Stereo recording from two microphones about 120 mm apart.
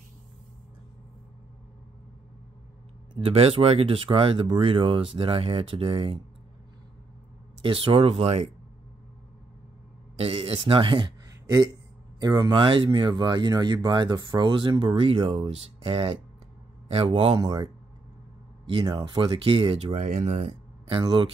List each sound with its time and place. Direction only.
3.3 s speech: 50° right (ahead or behind)
7.6 s speech: 45° right (ahead or behind)
10.1 s speech: 55° right (ahead or behind)
12.2 s a man's voice: 35° right (ahead or behind); by 17.4 s 55° right (ahead or behind)
17.4 s speech: 35° right (ahead or behind)
18.7 s speech: 45° right (ahead or behind)
20.0 s speech: 85° right
20.9 s speech: 40° right (ahead or behind)